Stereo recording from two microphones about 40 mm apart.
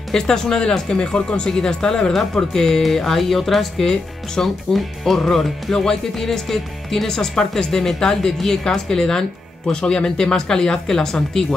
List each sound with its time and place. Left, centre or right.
0.1 s speech: centre
1.5 s speech: centre